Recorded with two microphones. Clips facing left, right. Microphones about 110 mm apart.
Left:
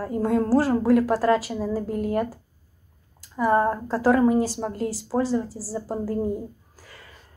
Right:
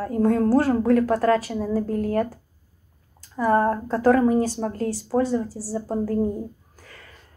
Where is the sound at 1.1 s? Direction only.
25° left (ahead or behind).